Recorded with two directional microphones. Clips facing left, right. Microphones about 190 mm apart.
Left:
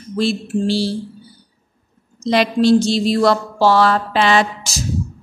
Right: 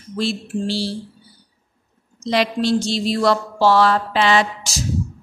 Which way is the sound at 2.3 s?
45° left (ahead or behind).